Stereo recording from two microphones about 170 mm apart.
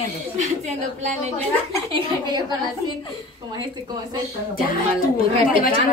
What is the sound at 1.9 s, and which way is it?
Speech, 25° right (ahead or behind).